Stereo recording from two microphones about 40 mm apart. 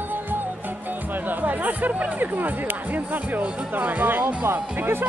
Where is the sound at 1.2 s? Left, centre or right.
Right.